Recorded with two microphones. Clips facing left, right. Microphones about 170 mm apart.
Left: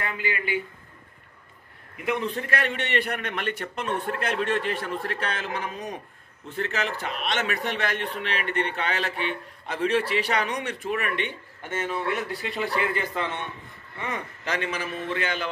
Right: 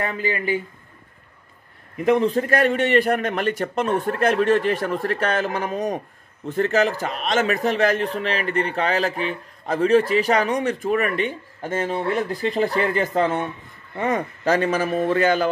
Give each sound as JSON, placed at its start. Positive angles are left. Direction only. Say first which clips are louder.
{"t": 0.0, "sound": "a man's voice", "louder": "right 6 dB", "side_deg": -40}
{"t": 2.0, "sound": "a man's voice", "louder": "right 10 dB", "side_deg": -40}